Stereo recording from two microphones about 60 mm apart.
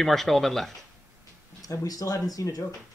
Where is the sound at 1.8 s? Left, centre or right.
Left.